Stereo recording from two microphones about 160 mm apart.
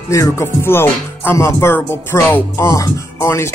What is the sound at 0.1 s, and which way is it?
Music, 15° left (ahead or behind).